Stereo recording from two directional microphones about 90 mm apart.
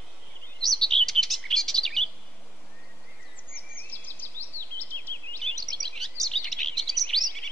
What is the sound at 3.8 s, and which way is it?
Bird vocalization, 20° left (ahead or behind).